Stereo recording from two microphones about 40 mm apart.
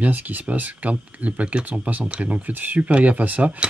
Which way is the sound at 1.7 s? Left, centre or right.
Right.